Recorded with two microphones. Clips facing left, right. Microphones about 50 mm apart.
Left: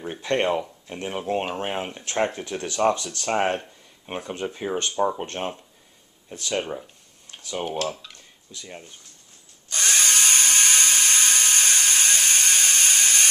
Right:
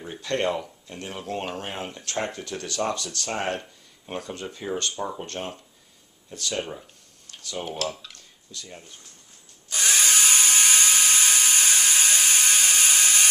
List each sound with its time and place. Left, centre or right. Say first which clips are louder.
0.0 s speech: left 3 dB; left
7.2 s tick-tock: left 3 dB; left
7.6 s speech: left 3 dB; centre
9.7 s drill: even; centre